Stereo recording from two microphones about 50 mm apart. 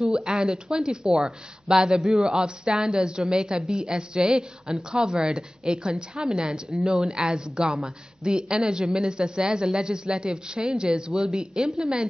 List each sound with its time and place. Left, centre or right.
0.0 s a woman's voice: centre